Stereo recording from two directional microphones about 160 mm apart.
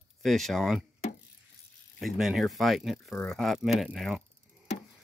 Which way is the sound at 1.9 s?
Centre (ahead or behind).